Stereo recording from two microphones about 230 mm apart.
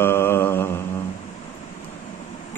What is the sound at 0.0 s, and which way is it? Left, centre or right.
Mantra, centre.